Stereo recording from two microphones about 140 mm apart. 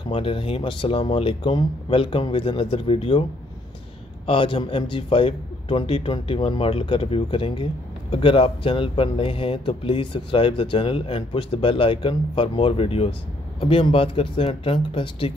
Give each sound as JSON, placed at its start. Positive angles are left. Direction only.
{"t": 0.1, "sound": "a man's voice", "side_deg": 40}
{"t": 4.3, "sound": "a man's voice", "side_deg": 40}